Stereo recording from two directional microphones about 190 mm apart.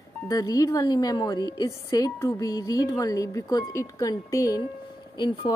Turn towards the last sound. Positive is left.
turn(degrees=25)  # may be behind; listen again after turning